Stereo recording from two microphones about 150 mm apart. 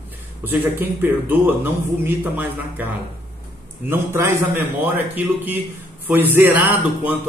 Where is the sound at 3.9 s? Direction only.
15° right (ahead or behind).